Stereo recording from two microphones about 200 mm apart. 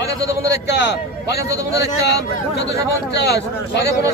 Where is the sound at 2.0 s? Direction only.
55° left (ahead or behind).